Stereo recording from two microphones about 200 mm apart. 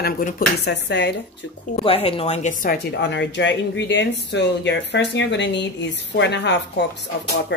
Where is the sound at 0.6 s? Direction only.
55° left (ahead or behind).